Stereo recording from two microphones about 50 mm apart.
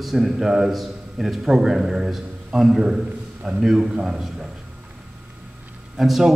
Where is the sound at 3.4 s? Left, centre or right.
Centre.